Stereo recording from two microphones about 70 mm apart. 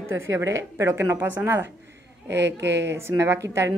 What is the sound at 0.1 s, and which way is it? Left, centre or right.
Speech, right.